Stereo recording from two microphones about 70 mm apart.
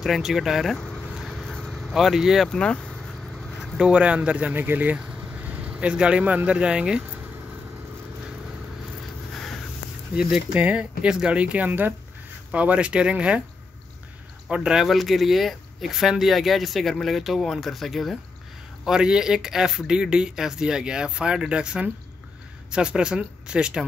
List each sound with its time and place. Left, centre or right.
0.0 s speech: centre
0.7 s vehicle: centre
2.5 s speech: centre
3.8 s speech: centre
9.3 s a sound: centre
10.1 s speech: centre
14.5 s speech: centre
18.9 s speech: centre